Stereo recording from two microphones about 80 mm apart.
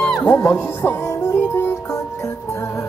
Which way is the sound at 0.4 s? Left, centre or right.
Left.